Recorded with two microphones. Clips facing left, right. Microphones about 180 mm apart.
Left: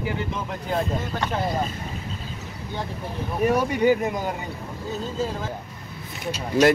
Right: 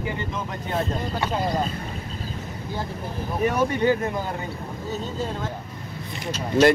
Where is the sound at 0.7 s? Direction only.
Centre (ahead or behind).